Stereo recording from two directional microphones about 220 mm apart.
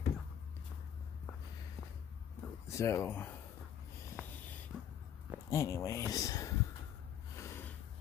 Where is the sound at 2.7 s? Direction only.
15° left (ahead or behind).